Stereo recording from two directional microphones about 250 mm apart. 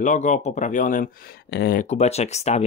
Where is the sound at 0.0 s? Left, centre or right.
Left.